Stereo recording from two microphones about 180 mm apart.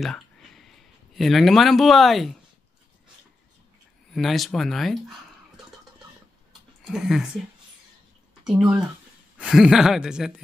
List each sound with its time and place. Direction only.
0.0 s speech: centre (ahead or behind)
4.1 s speech: centre (ahead or behind)
6.9 s speech: centre (ahead or behind)
8.5 s speech: 5° right (ahead or behind)